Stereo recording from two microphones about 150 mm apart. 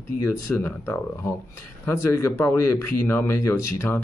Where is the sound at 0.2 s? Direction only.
15° left (ahead or behind).